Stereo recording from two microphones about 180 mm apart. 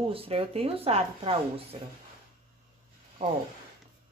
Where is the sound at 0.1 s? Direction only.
30° right (ahead or behind).